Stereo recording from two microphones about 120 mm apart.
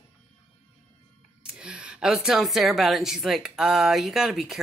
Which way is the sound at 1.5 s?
5° right (ahead or behind).